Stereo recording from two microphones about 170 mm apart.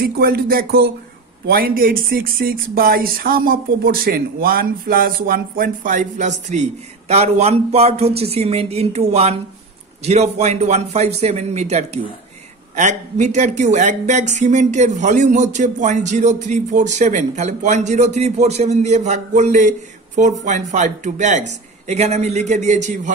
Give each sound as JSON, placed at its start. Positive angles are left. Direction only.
{"t": 0.0, "sound": "speech", "side_deg": -60}